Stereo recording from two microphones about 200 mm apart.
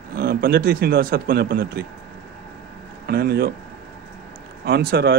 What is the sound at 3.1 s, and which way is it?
Speech, 55° right (ahead or behind).